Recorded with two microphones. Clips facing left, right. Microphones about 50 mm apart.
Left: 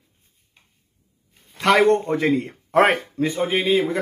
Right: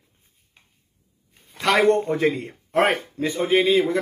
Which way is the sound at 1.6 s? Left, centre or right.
Left.